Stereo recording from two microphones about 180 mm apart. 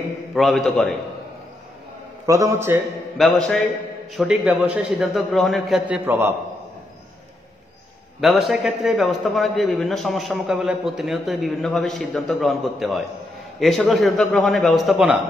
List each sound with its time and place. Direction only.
0.3 s a man's voice: centre (ahead or behind)
2.2 s a man's voice: 15° right (ahead or behind)
3.2 s a man's voice: centre (ahead or behind)
8.2 s a man's voice: centre (ahead or behind)